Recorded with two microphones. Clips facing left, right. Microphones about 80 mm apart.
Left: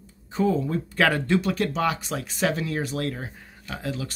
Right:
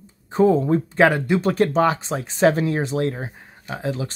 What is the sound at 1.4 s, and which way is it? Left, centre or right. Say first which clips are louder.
Speech: right 7 dB; right.